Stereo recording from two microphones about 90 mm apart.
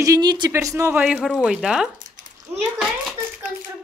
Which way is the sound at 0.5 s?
35° right (ahead or behind).